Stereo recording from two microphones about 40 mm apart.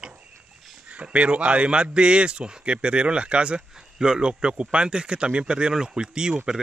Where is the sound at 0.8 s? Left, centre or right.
Right.